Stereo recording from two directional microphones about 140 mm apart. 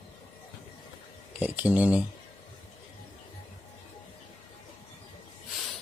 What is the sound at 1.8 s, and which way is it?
Speech, 10° right (ahead or behind).